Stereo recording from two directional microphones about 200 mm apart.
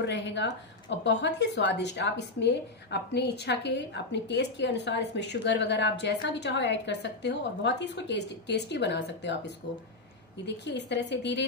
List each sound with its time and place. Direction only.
0.0 s a woman's voice: 60° left (ahead or behind)
10.4 s a woman's voice: 60° left (ahead or behind)